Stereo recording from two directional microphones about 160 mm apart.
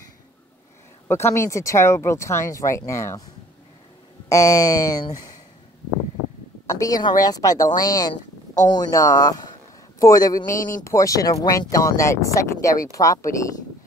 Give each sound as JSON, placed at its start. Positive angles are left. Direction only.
{"t": 1.0, "sound": "speech", "side_deg": 15}
{"t": 4.3, "sound": "speech", "side_deg": 20}
{"t": 6.7, "sound": "speech", "side_deg": 20}
{"t": 10.5, "sound": "speech", "side_deg": 55}
{"t": 10.8, "sound": "speech", "side_deg": 20}